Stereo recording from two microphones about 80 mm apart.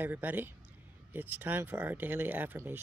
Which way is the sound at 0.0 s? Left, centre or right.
Right.